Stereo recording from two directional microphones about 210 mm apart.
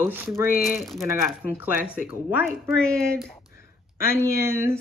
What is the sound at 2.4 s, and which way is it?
Speech, 5° left (ahead or behind).